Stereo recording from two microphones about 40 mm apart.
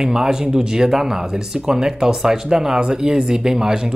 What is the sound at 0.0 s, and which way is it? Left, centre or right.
Speech, centre.